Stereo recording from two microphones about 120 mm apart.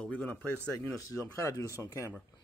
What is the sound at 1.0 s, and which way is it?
Speech, 25° left (ahead or behind).